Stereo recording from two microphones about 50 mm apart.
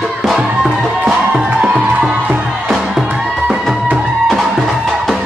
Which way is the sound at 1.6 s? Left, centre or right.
Right.